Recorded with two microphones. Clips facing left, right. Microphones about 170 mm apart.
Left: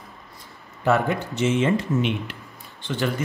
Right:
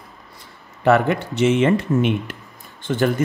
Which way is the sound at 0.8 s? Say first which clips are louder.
Right 5 dB; 70° right (ahead or behind).